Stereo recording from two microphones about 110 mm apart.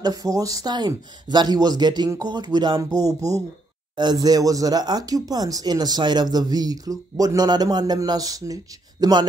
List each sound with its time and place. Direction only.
0.0 s speech: 35° right (ahead or behind)